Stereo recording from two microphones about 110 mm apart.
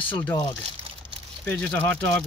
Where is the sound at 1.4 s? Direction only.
15° left (ahead or behind).